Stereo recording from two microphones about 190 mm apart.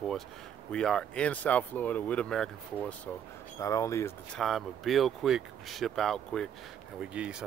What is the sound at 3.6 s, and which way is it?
Speech, 15° left (ahead or behind).